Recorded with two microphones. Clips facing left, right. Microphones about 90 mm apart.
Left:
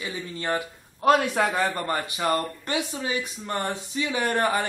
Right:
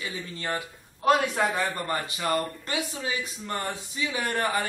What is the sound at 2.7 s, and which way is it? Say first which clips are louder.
Speech: left 6 dB; 25° left (ahead or behind).